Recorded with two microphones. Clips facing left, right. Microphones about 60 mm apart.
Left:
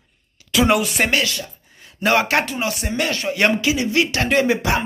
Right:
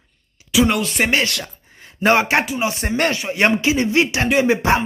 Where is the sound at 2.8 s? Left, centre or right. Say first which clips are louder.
Right 3 dB; right.